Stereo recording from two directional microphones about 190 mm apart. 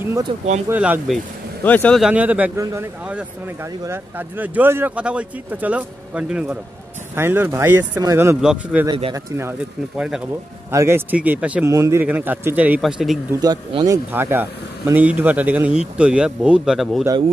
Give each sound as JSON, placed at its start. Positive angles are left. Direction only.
{"t": 0.7, "sound": "speech", "side_deg": -10}
{"t": 2.0, "sound": "a man's voice", "side_deg": -5}
{"t": 8.8, "sound": "speech", "side_deg": -25}
{"t": 9.4, "sound": "speech", "side_deg": -10}
{"t": 10.7, "sound": "a man's voice", "side_deg": -15}
{"t": 13.4, "sound": "a man's voice", "side_deg": -20}